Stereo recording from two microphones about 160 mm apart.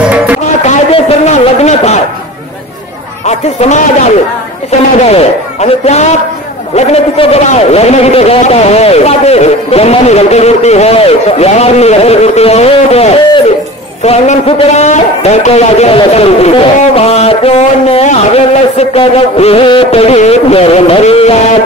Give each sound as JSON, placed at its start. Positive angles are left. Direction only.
{"t": 0.7, "sound": "a man's voice", "side_deg": 40}
{"t": 3.3, "sound": "a man's voice", "side_deg": 45}